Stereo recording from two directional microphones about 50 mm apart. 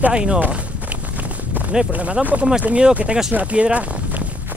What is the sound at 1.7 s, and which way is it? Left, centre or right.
Speech, right.